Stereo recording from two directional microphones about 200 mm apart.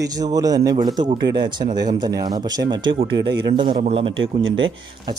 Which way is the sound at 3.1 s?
60° right (ahead or behind).